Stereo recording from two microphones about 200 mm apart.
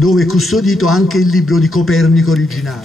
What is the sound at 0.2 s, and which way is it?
Speech, 90° left.